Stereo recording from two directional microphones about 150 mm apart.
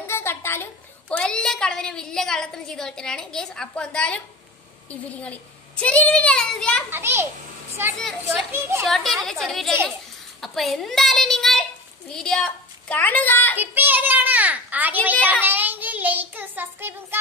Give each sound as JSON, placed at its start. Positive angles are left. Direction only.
{"t": 0.0, "sound": "a woman's voice", "side_deg": 15}
{"t": 5.2, "sound": "a child's voice", "side_deg": 10}
{"t": 6.9, "sound": "a child's voice", "side_deg": -15}
{"t": 8.0, "sound": "a woman's voice", "side_deg": 0}
{"t": 8.5, "sound": "a child's voice", "side_deg": -15}
{"t": 8.8, "sound": "a woman's voice", "side_deg": 0}
{"t": 13.6, "sound": "a child's voice", "side_deg": -10}
{"t": 15.4, "sound": "child singing", "side_deg": -10}